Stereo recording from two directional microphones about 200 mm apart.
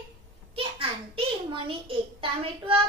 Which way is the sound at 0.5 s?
25° right (ahead or behind).